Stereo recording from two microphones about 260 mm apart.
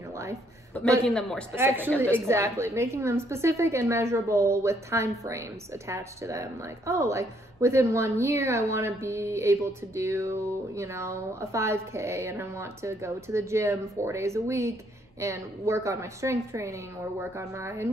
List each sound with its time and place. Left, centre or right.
1.0 s a man's voice: centre
1.5 s a woman's voice: centre